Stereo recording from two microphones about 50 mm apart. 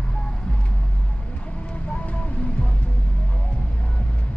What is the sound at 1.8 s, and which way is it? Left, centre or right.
Music, left.